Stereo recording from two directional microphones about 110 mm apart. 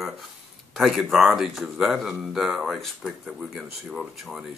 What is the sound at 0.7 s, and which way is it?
Speech, centre (ahead or behind).